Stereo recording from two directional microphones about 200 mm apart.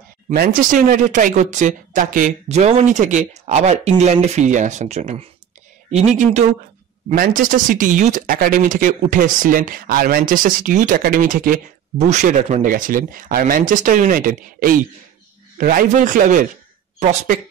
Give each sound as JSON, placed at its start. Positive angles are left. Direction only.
{"t": 0.3, "sound": "speech", "side_deg": -45}